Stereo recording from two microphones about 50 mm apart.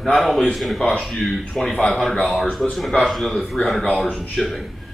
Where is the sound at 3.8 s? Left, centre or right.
Left.